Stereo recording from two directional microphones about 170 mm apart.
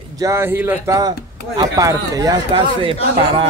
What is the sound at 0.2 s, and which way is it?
Speech, 15° right (ahead or behind).